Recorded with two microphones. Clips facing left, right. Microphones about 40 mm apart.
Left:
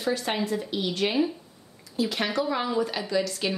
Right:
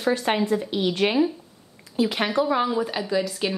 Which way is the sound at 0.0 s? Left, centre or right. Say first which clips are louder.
Right 5 dB; right.